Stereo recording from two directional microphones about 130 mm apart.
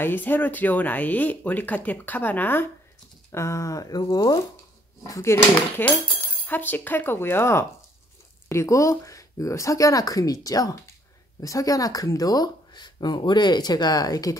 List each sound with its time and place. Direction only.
0.0 s speech: 15° left (ahead or behind)